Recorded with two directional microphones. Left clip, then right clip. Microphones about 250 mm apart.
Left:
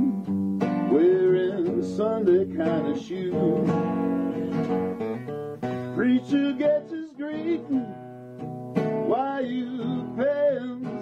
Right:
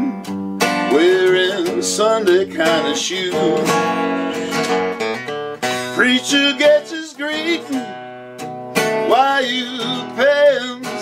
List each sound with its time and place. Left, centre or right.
0.6 s music: centre
7.2 s speech: centre
8.7 s music: centre